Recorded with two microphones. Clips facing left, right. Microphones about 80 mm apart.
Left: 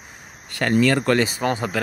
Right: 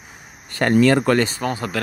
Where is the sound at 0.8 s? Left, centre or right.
Right.